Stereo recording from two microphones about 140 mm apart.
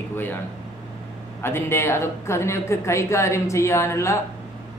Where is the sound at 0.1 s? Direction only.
15° left (ahead or behind).